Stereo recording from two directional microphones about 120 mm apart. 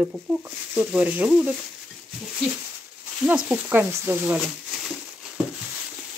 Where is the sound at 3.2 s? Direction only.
10° right (ahead or behind).